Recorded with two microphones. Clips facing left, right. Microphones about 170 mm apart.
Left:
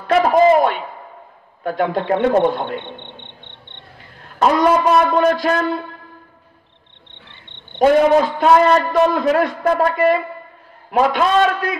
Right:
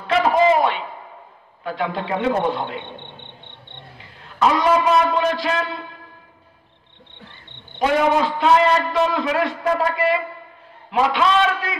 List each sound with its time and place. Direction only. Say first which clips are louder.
0.0 s a sound: left 4 dB; 45° left (ahead or behind)
1.6 s a man's voice: left 5 dB; 45° left (ahead or behind)
4.2 s speech: left 3 dB; 45° left (ahead or behind)
7.2 s cricket: even; 20° left (ahead or behind)
7.8 s a man's voice: left 6 dB; 45° left (ahead or behind)